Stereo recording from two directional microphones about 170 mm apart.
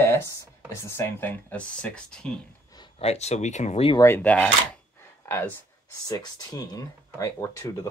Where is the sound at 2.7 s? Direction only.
30° left (ahead or behind).